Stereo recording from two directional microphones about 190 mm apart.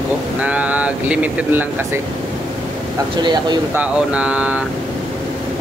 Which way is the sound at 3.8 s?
5° right (ahead or behind).